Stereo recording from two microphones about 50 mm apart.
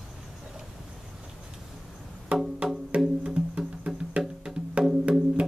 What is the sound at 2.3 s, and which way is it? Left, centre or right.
Music, right.